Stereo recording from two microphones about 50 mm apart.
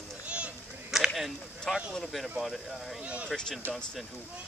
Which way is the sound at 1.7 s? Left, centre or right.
Centre.